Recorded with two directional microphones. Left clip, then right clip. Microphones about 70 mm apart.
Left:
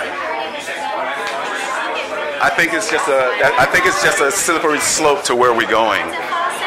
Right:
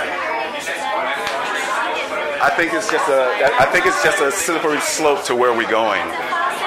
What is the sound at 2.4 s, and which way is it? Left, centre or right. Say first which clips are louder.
Speech: left 2 dB; left.